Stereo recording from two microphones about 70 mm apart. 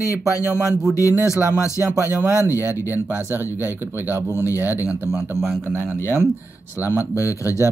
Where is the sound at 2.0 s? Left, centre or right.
Right.